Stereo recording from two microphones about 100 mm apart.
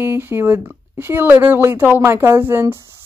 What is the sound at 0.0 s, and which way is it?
Speech, 20° right (ahead or behind).